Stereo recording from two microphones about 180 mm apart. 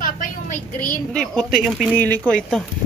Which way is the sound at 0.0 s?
45° left (ahead or behind).